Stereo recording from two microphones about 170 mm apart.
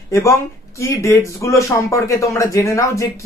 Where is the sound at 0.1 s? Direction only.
20° left (ahead or behind).